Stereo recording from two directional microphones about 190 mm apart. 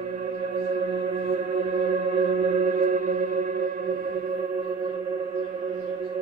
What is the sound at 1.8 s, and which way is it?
Music, 35° right (ahead or behind).